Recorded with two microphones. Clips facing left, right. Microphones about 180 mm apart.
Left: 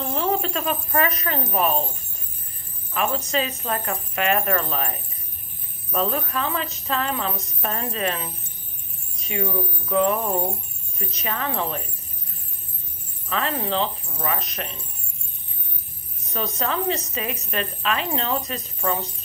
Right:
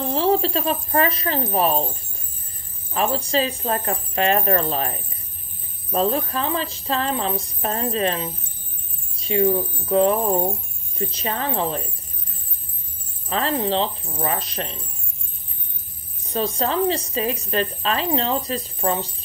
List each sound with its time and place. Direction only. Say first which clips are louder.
0.0 s speech: right 4 dB; 30° right (ahead or behind)
2.9 s a woman's voice: right 3 dB; 35° right (ahead or behind)
13.3 s a woman's voice: right 3 dB; 30° right (ahead or behind)
16.3 s a woman's voice: right 4 dB; 30° right (ahead or behind)